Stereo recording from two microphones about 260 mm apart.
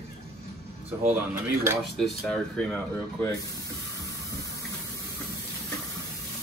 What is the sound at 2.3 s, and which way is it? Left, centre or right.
Speech, centre.